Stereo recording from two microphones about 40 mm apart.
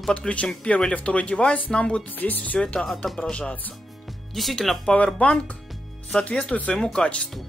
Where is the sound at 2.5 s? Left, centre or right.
Left.